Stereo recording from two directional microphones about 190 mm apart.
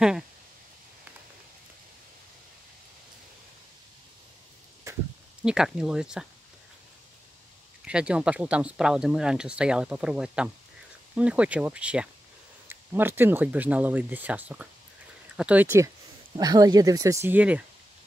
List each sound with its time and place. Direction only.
4.9 s a sound: 15° right (ahead or behind)
5.4 s speech: 5° right (ahead or behind)
7.8 s speech: 5° right (ahead or behind)